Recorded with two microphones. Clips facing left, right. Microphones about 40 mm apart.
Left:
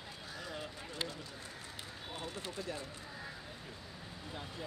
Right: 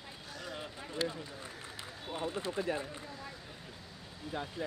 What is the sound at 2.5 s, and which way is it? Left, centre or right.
Run, right.